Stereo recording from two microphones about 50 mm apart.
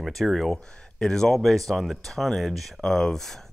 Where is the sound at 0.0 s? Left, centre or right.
Centre.